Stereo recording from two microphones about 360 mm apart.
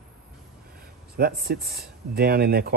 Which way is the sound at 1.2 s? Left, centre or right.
Right.